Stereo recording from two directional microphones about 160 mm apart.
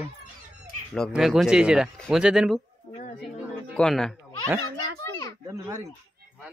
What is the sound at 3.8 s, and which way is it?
Speech, centre (ahead or behind).